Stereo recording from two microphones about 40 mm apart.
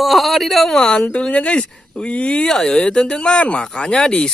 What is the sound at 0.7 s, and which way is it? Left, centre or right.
Speech, centre.